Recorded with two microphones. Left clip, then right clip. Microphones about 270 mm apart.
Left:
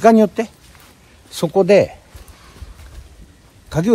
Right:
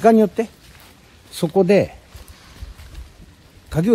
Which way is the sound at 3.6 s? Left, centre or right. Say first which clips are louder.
Left 2 dB; centre.